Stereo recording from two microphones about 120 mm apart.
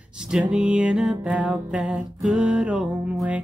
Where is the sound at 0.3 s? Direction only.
5° right (ahead or behind).